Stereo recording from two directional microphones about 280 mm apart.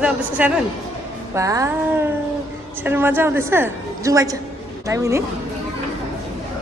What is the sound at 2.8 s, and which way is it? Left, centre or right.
A woman's voice, centre.